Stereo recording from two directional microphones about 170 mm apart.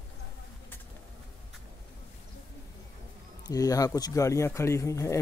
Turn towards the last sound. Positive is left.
turn(degrees=15)  # may be behind; listen again after turning